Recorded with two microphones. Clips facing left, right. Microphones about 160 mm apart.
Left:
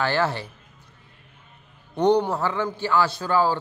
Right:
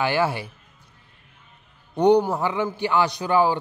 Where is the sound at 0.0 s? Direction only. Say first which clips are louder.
Right 1 dB; 10° right (ahead or behind).